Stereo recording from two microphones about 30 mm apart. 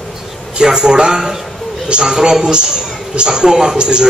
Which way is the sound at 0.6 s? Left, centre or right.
Right.